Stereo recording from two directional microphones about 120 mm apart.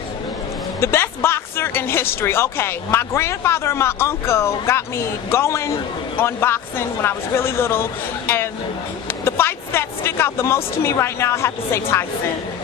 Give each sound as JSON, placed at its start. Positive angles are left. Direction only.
{"t": 0.7, "sound": "speech", "side_deg": 20}